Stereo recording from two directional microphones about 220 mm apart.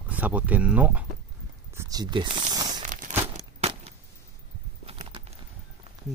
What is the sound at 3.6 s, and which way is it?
Keys jangling, 25° right (ahead or behind).